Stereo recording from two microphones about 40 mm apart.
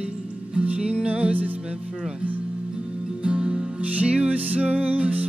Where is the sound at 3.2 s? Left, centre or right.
Right.